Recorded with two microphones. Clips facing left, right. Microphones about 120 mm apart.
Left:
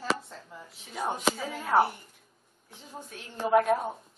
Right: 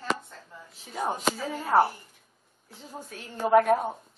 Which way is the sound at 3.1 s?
40° right (ahead or behind).